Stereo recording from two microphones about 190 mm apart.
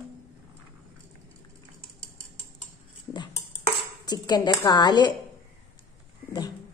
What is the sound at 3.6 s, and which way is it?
Speech, 20° left (ahead or behind).